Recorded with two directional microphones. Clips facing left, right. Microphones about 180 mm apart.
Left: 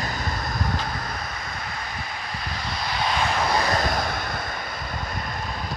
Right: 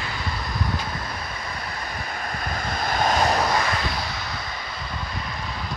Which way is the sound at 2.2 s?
50° right (ahead or behind).